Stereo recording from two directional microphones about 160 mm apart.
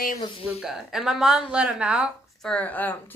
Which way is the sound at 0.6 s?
5° right (ahead or behind).